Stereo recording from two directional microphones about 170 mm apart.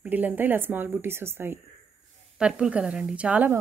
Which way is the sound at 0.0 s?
10° right (ahead or behind).